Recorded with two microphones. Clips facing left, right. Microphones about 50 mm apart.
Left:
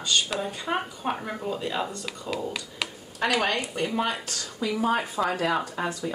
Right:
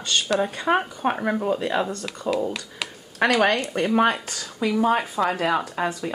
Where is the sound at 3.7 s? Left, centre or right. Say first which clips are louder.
Right 7 dB; right.